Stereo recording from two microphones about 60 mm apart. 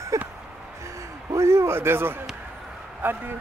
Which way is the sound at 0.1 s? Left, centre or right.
Right.